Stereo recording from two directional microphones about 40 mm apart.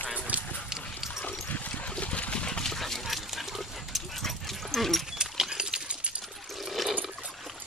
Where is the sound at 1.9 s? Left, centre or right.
Left.